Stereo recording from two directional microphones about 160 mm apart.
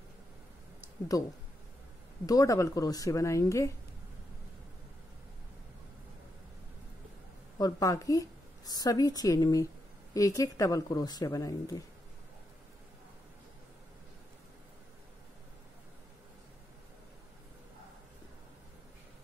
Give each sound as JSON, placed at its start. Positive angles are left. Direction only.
{"t": 1.1, "sound": "a woman's voice", "side_deg": 20}
{"t": 7.5, "sound": "a woman's voice", "side_deg": 20}